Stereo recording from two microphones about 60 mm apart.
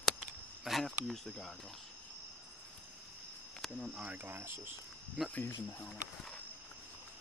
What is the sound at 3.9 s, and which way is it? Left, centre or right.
Speech, right.